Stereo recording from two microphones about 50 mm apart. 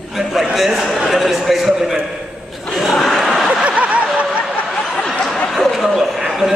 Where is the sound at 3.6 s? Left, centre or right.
Right.